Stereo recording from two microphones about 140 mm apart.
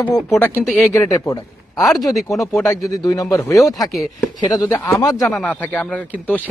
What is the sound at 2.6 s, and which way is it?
Speech, 25° left (ahead or behind).